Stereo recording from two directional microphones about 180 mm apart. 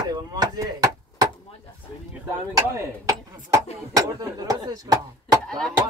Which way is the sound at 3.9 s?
20° right (ahead or behind).